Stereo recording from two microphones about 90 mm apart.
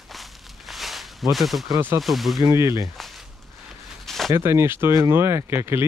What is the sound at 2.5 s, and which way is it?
Speech, 30° right (ahead or behind).